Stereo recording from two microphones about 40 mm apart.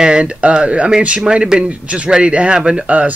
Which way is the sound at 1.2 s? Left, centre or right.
Centre.